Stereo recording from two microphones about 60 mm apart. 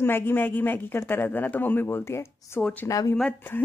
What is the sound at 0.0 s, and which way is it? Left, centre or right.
Speech, left.